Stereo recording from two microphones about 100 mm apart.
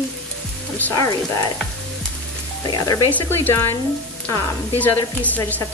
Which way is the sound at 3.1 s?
20° left (ahead or behind).